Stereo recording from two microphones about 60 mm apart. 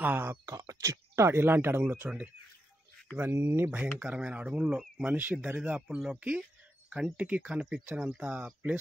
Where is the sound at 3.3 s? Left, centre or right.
Right.